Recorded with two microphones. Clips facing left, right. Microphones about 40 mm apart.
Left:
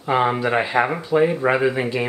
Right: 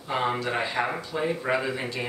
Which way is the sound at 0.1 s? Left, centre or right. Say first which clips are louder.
Left 8 dB; left.